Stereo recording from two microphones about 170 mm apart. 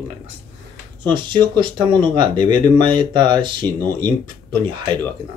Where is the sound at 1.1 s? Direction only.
25° right (ahead or behind).